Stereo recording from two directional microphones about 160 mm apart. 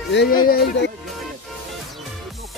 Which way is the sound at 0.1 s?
90° left.